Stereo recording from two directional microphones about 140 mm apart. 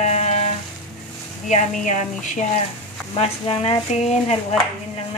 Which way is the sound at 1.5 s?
60° left (ahead or behind).